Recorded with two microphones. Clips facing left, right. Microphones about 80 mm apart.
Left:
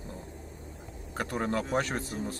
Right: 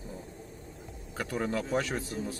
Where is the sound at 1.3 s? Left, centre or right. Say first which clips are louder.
Left 1 dB; centre.